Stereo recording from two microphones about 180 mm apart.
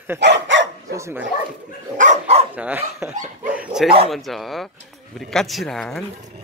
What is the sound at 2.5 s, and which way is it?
Speech, 10° right (ahead or behind).